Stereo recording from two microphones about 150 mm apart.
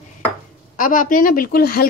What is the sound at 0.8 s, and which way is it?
Speech, 65° left (ahead or behind).